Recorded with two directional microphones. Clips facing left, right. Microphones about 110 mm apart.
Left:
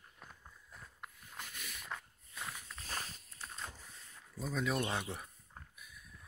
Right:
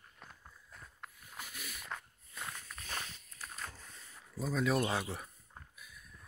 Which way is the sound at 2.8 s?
35° left (ahead or behind).